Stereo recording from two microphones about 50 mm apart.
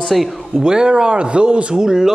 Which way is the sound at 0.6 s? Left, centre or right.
Centre.